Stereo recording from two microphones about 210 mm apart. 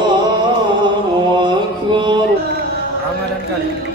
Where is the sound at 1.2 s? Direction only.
20° right (ahead or behind).